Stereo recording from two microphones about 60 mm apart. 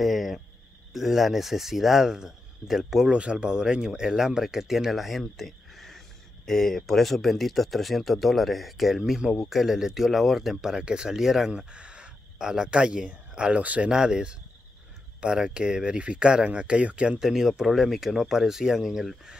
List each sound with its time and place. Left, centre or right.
0.0 s speech: centre
3.1 s speech: centre
11.7 s speech: centre
17.2 s speech: centre